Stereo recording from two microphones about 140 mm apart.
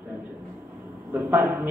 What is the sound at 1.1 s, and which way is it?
Speech, 15° right (ahead or behind).